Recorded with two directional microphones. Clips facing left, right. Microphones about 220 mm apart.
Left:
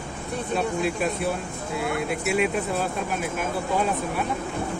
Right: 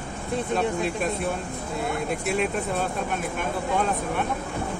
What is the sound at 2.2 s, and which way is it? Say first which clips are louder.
Speech: left 3 dB; 5° left (ahead or behind).